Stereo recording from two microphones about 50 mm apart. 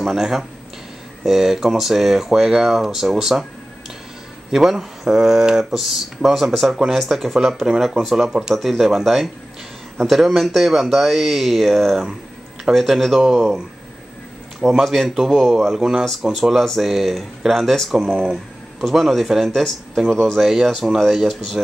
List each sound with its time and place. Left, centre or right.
0.0 s speech: centre
4.5 s speech: centre
8.5 s speech: centre
14.7 s speech: centre
17.9 s speech: centre
18.8 s speech: centre